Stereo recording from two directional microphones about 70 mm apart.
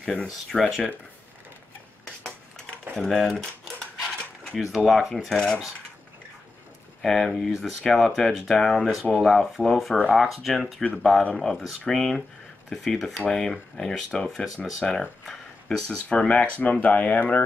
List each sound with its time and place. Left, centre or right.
0.0 s speech: centre
0.5 s speech: centre
3.0 s speech: centre
7.0 s speech: centre
10.8 s speech: centre
11.3 s speech: centre
16.3 s speech: centre